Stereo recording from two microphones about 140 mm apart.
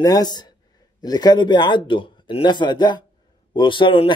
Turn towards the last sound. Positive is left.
turn(degrees=35)  # may be behind; listen again after turning